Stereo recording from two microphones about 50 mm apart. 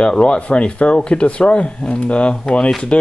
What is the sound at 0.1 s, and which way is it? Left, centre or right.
Speech, left.